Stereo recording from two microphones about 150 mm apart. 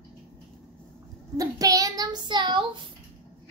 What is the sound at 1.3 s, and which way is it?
Child singing, 25° right (ahead or behind).